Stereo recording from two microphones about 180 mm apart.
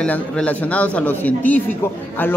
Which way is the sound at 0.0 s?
5° left (ahead or behind).